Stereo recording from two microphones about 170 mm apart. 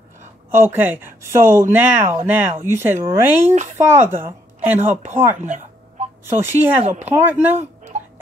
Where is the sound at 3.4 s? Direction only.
40° right (ahead or behind).